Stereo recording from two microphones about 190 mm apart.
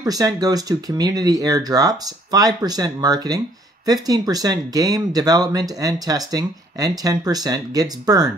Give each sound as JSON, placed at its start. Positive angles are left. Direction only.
{"t": 0.0, "sound": "speech", "side_deg": -20}